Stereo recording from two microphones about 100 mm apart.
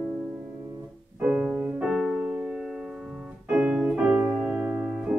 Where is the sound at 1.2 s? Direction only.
10° right (ahead or behind).